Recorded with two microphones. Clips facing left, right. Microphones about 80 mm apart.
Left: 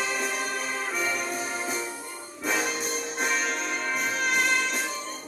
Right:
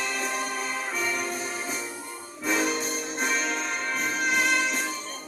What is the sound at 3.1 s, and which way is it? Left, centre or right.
Music, centre.